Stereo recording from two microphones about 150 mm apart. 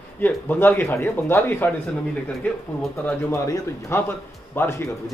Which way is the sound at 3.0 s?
20° left (ahead or behind).